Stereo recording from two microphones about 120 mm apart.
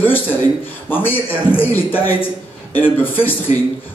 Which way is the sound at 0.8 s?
15° left (ahead or behind).